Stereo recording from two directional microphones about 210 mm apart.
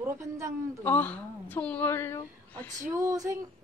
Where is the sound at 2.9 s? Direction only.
15° right (ahead or behind).